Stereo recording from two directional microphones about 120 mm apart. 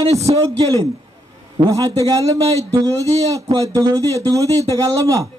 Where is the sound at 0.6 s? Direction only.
30° right (ahead or behind).